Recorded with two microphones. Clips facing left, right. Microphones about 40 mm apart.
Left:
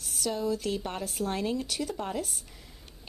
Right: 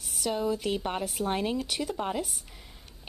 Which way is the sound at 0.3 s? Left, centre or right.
Centre.